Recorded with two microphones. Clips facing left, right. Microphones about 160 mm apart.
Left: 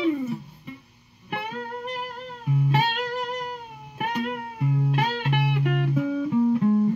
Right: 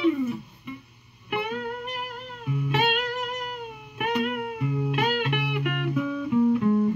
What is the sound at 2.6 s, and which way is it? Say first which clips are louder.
Music: even; 35° left (ahead or behind).